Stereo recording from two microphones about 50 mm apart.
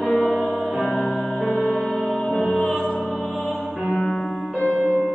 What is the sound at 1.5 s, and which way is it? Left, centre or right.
Music, centre.